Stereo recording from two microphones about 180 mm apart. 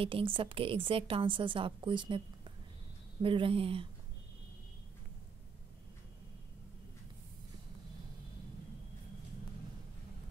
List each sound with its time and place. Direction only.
0.0 s a woman's voice: 30° right (ahead or behind)